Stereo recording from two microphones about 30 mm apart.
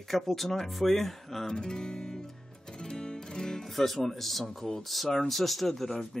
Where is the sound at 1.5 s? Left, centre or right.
Left.